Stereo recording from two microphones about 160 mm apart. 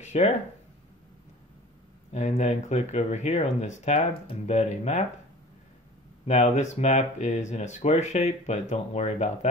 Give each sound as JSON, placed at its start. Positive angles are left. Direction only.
{"t": 0.0, "sound": "a sound", "side_deg": 45}
{"t": 2.1, "sound": "speech", "side_deg": 45}
{"t": 6.2, "sound": "speech", "side_deg": 45}